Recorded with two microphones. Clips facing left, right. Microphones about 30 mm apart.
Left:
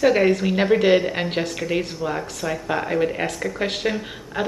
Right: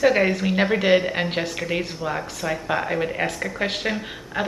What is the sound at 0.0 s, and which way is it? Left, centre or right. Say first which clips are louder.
Speech: left 1 dB; centre.